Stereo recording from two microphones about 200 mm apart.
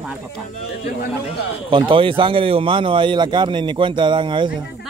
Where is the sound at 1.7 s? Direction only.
25° right (ahead or behind).